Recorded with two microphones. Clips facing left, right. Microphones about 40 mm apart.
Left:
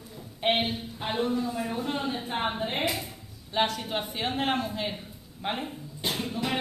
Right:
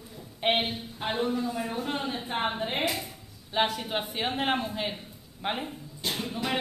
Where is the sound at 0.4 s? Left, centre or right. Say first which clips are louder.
Even; centre.